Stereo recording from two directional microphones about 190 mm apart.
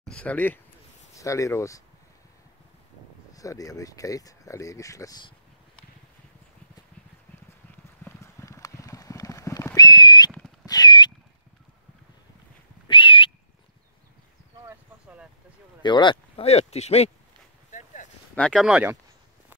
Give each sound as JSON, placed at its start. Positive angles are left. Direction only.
{"t": 0.0, "sound": "speech", "side_deg": 5}
{"t": 3.3, "sound": "speech", "side_deg": 20}
{"t": 8.0, "sound": "clip-clop", "side_deg": 15}
{"t": 10.6, "sound": "a sound", "side_deg": 20}
{"t": 12.8, "sound": "a sound", "side_deg": 25}
{"t": 14.7, "sound": "a sound", "side_deg": -10}
{"t": 15.8, "sound": "speech", "side_deg": 25}
{"t": 17.6, "sound": "boat", "side_deg": 40}
{"t": 18.3, "sound": "speech", "side_deg": 5}